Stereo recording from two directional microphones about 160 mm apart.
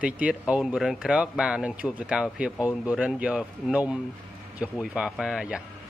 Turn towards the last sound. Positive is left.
turn(degrees=-5)  # may be behind; listen again after turning